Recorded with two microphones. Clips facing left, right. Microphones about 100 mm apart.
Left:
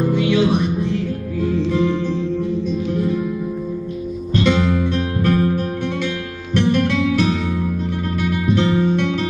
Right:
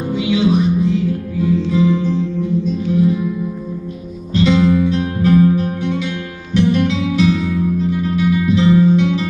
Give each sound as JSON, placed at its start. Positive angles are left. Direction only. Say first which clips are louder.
{"t": 0.1, "sound": "music", "louder": "right 5 dB", "side_deg": 55}
{"t": 4.3, "sound": "music", "louder": "right 4 dB", "side_deg": 55}